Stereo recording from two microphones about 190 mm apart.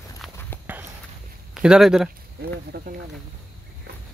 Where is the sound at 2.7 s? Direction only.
55° right (ahead or behind).